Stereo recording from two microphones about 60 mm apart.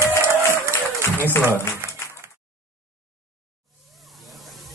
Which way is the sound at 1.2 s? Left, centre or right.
Left.